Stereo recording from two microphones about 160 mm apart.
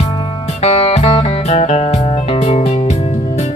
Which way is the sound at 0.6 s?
40° left (ahead or behind).